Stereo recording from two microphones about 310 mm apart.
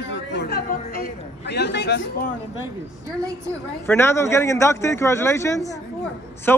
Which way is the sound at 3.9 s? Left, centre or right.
Centre.